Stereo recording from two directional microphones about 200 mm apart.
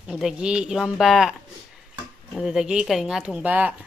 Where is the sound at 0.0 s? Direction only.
5° right (ahead or behind).